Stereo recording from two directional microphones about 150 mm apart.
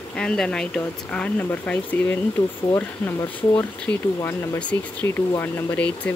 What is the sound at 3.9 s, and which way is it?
Speech, 15° left (ahead or behind).